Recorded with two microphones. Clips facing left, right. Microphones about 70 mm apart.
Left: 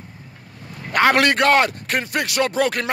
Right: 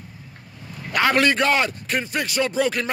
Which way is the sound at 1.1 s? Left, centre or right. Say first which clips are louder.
Left 1 dB; left.